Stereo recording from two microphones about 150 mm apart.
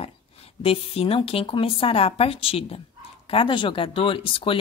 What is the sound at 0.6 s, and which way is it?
Speech, 40° left (ahead or behind).